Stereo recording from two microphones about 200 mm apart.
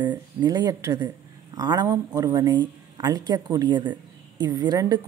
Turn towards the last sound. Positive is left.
turn(degrees=-20)  # may be behind; listen again after turning